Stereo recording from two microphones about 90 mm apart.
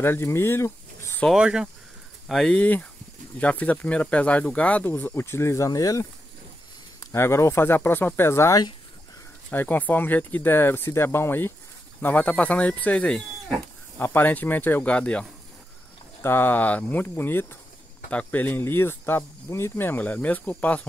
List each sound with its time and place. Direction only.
0.0 s speech: 30° left (ahead or behind)
1.3 s speech: 10° right (ahead or behind)
2.2 s speech: 5° left (ahead or behind); by 6.0 s 40° left (ahead or behind)
7.0 s speech: 30° left (ahead or behind); by 13.6 s 15° left (ahead or behind)
13.9 s speech: 25° left (ahead or behind)
16.2 s speech: 25° left (ahead or behind)